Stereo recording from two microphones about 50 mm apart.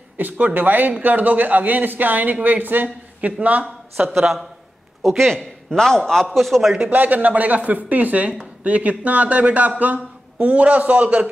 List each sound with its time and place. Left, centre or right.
0.2 s speech: right
4.1 s a man's voice: centre
6.9 s speech: right